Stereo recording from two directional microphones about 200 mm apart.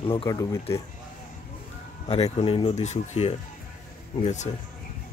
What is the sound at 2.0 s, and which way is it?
Speech, 30° left (ahead or behind).